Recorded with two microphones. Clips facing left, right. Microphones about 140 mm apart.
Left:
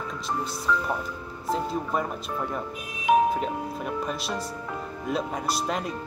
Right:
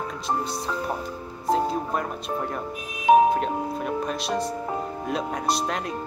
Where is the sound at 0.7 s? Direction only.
45° right (ahead or behind).